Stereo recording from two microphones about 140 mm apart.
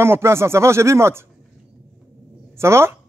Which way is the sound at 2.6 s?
20° right (ahead or behind).